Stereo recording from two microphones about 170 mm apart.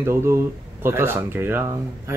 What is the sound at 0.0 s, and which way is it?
Speech, 15° right (ahead or behind).